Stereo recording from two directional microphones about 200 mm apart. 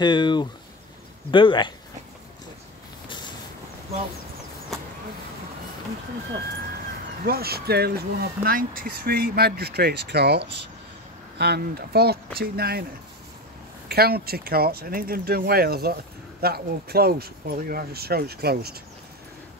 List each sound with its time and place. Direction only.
0.0 s speech: 20° left (ahead or behind)
7.2 s speech: 50° right (ahead or behind)
13.8 s speech: 50° right (ahead or behind)